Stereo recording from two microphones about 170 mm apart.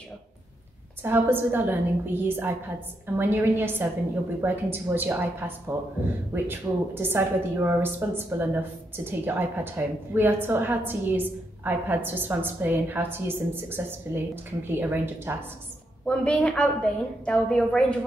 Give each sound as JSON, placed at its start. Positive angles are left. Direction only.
{"t": 1.0, "sound": "a woman's voice", "side_deg": -10}
{"t": 16.1, "sound": "a woman's voice", "side_deg": 5}